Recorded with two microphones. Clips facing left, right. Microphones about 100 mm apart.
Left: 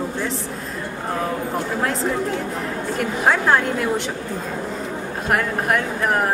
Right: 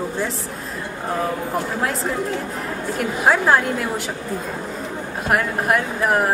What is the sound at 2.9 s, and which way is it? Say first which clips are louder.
Speech: right 1 dB; 5° right (ahead or behind).